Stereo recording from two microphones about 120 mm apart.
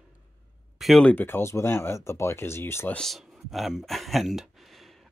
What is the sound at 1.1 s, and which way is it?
Speech, 15° left (ahead or behind).